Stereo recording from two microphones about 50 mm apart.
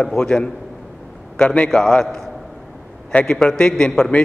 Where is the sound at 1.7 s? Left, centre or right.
Centre.